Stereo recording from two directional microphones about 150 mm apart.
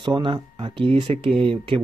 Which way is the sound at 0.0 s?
35° right (ahead or behind).